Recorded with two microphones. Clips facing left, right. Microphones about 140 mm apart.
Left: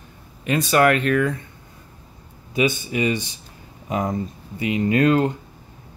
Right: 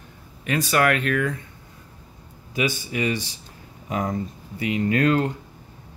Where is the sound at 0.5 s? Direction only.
25° left (ahead or behind).